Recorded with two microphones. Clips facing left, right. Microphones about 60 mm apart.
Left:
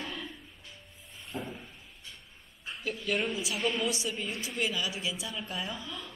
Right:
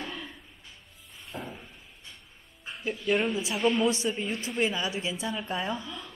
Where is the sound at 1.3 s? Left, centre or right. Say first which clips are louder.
Even; centre.